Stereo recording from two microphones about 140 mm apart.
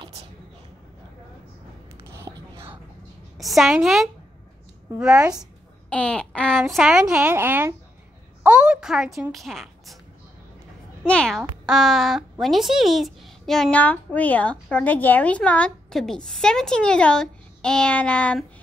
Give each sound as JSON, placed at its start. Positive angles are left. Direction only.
{"t": 0.0, "sound": "a sound", "side_deg": -45}
{"t": 2.0, "sound": "whispering", "side_deg": -20}
{"t": 3.3, "sound": "a woman's voice", "side_deg": 0}
{"t": 5.9, "sound": "a sound", "side_deg": 10}
{"t": 6.6, "sound": "a woman's voice", "side_deg": -5}
{"t": 11.1, "sound": "speech", "side_deg": 5}